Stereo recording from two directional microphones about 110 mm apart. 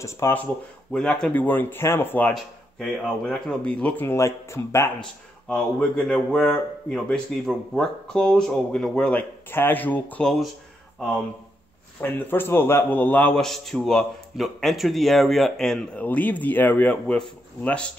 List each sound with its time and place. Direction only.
0.0 s speech: 25° left (ahead or behind)
0.9 s speech: 5° left (ahead or behind); by 4.9 s 25° left (ahead or behind)
5.5 s speech: 10° left (ahead or behind)
9.5 s speech: 20° left (ahead or behind)
12.0 s speech: 20° left (ahead or behind)
13.3 s a man's voice: 5° left (ahead or behind)